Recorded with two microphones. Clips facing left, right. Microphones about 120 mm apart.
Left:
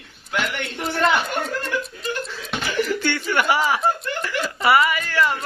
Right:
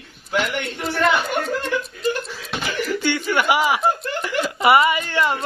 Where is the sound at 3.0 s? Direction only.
15° right (ahead or behind).